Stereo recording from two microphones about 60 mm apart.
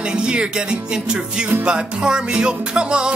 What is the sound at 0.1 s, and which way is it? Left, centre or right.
Music, centre.